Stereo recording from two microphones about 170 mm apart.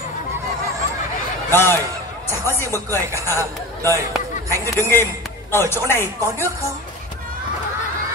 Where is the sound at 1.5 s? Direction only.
15° left (ahead or behind).